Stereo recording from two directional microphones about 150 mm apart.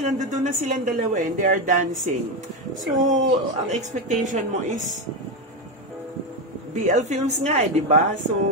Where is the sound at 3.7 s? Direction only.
55° right (ahead or behind).